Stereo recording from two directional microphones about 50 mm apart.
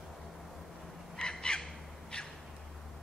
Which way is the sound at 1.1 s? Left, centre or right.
Centre.